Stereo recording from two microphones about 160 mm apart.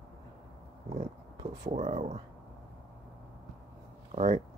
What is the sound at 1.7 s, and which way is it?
Speech, 50° right (ahead or behind).